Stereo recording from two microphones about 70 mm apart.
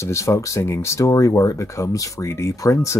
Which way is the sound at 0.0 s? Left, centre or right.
Left.